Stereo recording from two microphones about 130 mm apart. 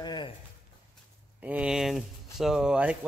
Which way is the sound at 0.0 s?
35° left (ahead or behind).